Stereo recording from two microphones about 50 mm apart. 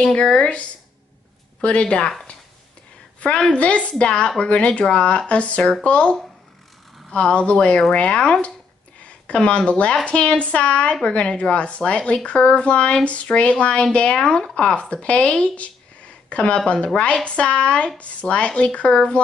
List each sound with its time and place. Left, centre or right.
0.0 s speech: centre
3.2 s speech: left
5.6 s speech: centre
5.9 s speech: left